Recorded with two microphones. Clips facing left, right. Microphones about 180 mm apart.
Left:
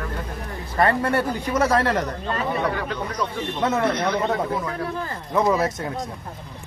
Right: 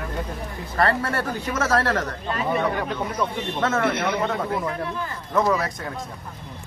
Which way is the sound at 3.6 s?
15° left (ahead or behind).